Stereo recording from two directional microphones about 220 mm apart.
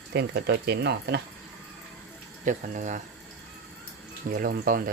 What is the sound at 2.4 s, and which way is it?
Speech, 35° right (ahead or behind).